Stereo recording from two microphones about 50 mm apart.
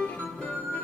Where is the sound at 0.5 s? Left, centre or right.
Left.